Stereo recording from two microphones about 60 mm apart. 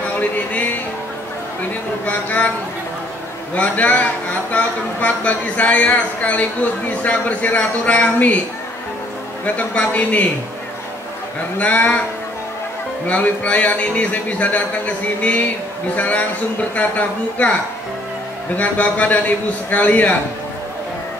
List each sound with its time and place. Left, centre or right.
0.1 s speech: left
2.0 s a man's voice: left
3.5 s a man's voice: left
9.6 s a man's voice: left
11.5 s a man's voice: left
13.0 s a man's voice: left
18.6 s a man's voice: left